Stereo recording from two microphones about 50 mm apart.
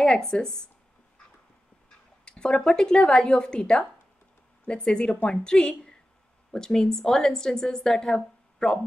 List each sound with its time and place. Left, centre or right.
0.3 s a woman's voice: centre
2.2 s a woman's voice: centre